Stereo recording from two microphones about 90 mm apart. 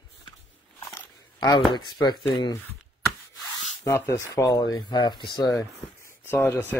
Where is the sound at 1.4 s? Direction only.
55° left (ahead or behind).